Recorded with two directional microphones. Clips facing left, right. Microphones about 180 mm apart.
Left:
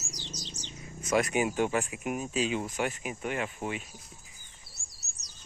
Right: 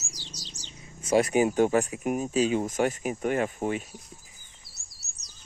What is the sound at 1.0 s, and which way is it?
Speech, 30° right (ahead or behind).